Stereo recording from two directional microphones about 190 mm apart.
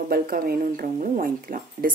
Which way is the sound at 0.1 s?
50° right (ahead or behind).